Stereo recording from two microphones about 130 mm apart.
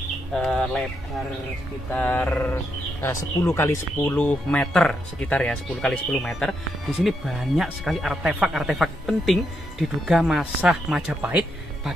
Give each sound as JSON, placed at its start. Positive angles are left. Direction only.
{"t": 0.3, "sound": "speech", "side_deg": 5}
{"t": 1.9, "sound": "speech", "side_deg": 15}